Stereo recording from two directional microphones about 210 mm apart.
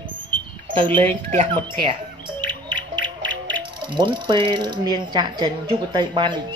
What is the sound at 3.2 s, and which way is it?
Music, 60° right (ahead or behind).